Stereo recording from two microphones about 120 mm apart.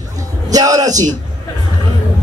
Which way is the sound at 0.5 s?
30° right (ahead or behind).